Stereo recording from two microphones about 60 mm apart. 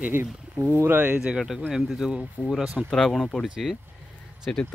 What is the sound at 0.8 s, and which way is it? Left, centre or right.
Speech, right.